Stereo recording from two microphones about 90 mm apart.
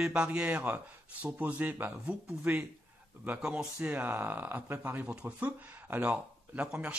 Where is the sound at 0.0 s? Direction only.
10° right (ahead or behind).